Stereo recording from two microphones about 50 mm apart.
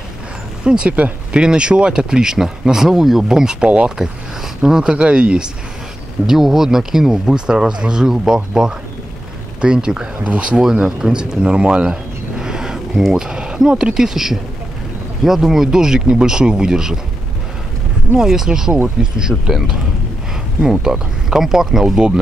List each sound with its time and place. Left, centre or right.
0.7 s speech: right
3.6 s speech: right
4.6 s speech: centre
4.9 s speech: right
6.2 s speech: centre; by 10.6 s right
10.6 s speech: centre
18.1 s speech: centre